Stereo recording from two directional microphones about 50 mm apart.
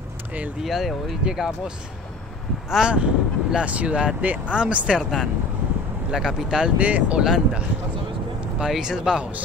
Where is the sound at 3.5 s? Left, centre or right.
Right.